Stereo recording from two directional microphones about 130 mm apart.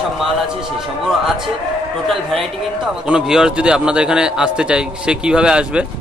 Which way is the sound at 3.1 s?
5° right (ahead or behind).